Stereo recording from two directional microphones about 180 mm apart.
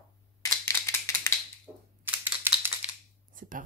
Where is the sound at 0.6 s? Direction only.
15° left (ahead or behind).